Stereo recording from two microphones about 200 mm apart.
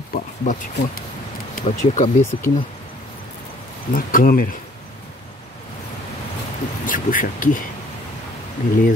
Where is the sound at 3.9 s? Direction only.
45° left (ahead or behind).